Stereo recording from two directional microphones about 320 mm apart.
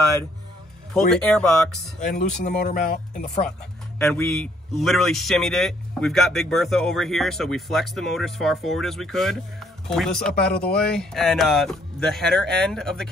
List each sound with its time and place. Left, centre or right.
0.9 s a man's voice: centre
2.0 s speech: left
4.0 s a man's voice: centre